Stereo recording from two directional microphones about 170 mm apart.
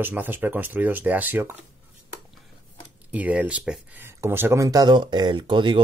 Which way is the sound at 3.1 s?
10° right (ahead or behind).